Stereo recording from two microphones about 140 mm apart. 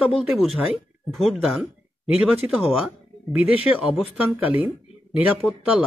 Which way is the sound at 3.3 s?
5° right (ahead or behind).